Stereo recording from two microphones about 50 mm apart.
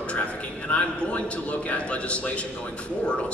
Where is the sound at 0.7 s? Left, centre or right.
Left.